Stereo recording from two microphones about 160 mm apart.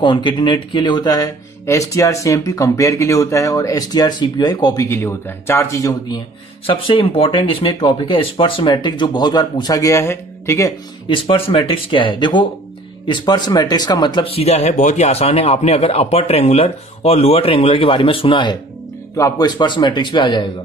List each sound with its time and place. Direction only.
0.0 s speech: 30° left (ahead or behind)
11.1 s speech: 30° left (ahead or behind)